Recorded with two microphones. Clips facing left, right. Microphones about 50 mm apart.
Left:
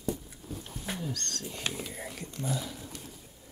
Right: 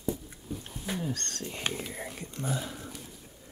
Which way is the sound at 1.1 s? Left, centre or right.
Right.